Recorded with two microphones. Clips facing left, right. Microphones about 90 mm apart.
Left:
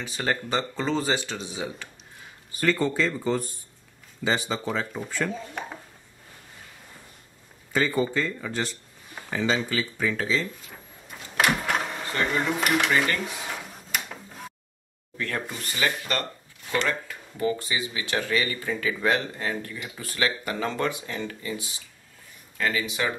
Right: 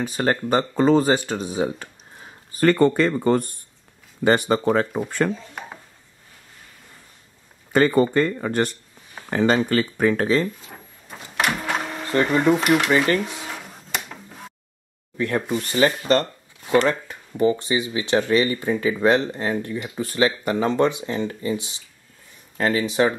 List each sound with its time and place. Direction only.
0.0 s speech: 45° right (ahead or behind)
7.7 s speech: 55° right (ahead or behind)
11.3 s printer: centre (ahead or behind)
12.6 s cutlery: 5° right (ahead or behind)
13.2 s a sound: centre (ahead or behind)
15.1 s speech: 20° right (ahead or behind)